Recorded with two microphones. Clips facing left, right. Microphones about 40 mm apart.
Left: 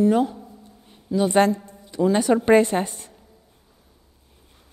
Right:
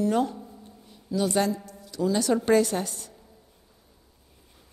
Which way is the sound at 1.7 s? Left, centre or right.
Left.